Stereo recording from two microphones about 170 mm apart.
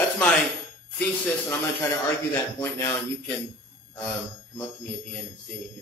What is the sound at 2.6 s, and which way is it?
Speech, 15° left (ahead or behind).